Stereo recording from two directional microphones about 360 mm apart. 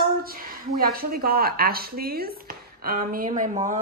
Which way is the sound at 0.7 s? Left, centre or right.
Right.